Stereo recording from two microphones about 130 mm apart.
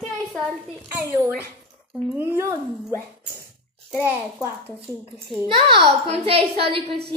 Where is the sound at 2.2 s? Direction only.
15° right (ahead or behind).